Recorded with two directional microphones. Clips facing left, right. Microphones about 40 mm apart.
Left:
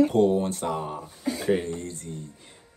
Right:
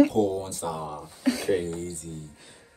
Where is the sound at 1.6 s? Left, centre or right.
Left.